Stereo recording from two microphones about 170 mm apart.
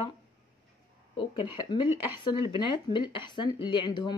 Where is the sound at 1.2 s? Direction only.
30° left (ahead or behind).